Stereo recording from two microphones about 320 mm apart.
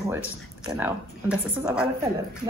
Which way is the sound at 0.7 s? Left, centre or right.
Centre.